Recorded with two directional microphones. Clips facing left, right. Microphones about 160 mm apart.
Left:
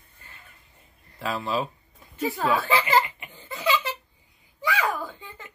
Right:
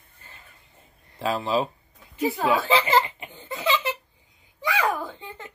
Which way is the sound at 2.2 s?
15° right (ahead or behind).